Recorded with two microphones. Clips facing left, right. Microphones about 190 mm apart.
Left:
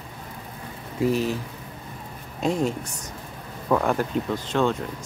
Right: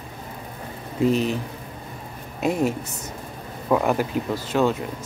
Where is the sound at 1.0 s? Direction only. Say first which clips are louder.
Right 2 dB; 20° right (ahead or behind).